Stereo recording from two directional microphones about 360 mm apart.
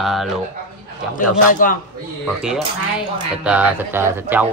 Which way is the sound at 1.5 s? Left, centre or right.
Left.